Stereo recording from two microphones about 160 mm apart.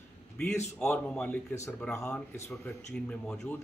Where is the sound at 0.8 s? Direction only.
5° left (ahead or behind).